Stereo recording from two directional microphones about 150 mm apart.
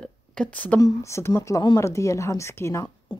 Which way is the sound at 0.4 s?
10° left (ahead or behind).